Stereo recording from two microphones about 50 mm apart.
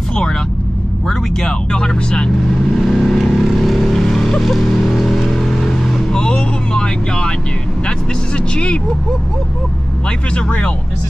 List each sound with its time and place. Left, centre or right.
1.0 s vehicle: centre
6.1 s vehicle: centre
10.3 s speech: left